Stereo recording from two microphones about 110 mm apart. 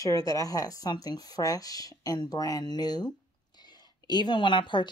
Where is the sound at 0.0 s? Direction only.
35° left (ahead or behind).